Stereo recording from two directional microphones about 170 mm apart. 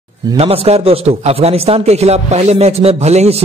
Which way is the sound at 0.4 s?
35° right (ahead or behind).